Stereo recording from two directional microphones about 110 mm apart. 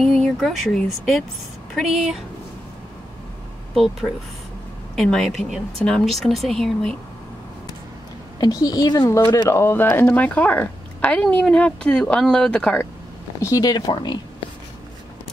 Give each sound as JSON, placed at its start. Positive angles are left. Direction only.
{"t": 0.0, "sound": "a woman's voice", "side_deg": 5}
{"t": 3.7, "sound": "a woman's voice", "side_deg": 0}
{"t": 8.4, "sound": "speech", "side_deg": 35}
{"t": 9.5, "sound": "a woman's voice", "side_deg": 20}
{"t": 13.4, "sound": "speech", "side_deg": 35}